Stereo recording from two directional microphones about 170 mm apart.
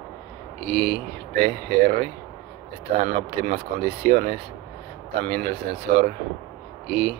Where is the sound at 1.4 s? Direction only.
55° right (ahead or behind).